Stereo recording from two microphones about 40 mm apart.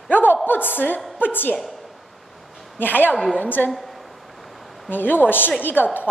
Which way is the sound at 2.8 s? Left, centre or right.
Left.